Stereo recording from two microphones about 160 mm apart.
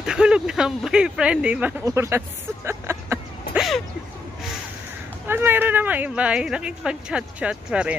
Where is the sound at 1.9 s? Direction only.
15° right (ahead or behind).